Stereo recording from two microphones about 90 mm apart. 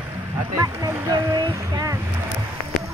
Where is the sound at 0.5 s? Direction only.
40° right (ahead or behind).